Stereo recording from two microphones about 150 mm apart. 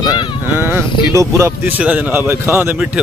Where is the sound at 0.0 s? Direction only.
30° left (ahead or behind).